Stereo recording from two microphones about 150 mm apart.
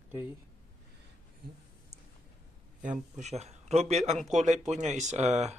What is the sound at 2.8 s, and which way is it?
Speech, 55° right (ahead or behind).